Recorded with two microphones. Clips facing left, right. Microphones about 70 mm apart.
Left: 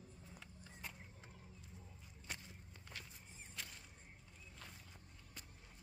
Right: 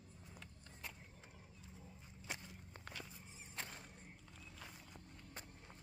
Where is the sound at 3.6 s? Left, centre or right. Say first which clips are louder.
Right 4 dB; right.